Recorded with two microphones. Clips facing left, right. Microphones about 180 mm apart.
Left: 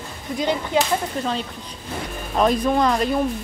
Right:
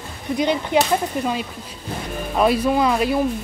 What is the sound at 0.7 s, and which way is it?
Speech, 20° right (ahead or behind).